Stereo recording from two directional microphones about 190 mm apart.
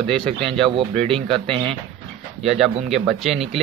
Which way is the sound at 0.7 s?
30° right (ahead or behind).